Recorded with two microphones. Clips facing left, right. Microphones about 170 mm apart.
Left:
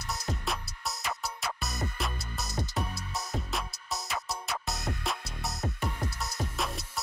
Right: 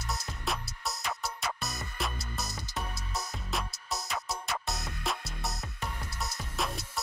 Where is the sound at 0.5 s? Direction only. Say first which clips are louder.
Even; centre (ahead or behind).